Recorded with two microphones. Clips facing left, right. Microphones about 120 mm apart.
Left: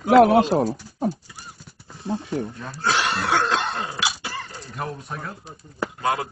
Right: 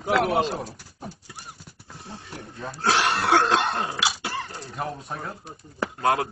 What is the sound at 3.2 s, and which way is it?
Cough, 60° right (ahead or behind).